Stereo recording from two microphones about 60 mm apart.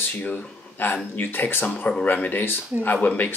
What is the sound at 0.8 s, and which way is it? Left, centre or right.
Speech, left.